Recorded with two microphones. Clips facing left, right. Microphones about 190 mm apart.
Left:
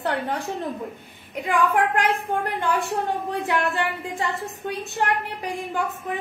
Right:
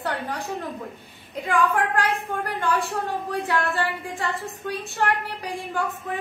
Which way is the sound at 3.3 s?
20° left (ahead or behind).